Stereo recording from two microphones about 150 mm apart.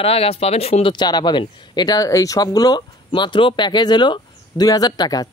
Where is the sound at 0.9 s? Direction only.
30° left (ahead or behind).